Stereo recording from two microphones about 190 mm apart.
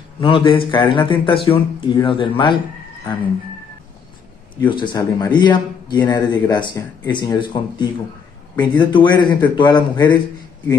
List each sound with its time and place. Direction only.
0.2 s speech: 25° left (ahead or behind)
4.6 s speech: 25° left (ahead or behind)